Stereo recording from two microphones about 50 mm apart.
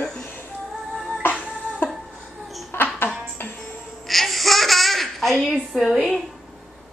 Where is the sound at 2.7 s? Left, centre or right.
Left.